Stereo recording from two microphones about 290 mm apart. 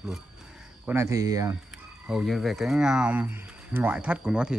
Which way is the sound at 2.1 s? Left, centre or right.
Centre.